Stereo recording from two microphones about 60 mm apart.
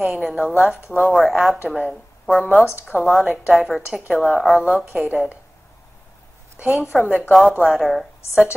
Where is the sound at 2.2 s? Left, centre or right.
Centre.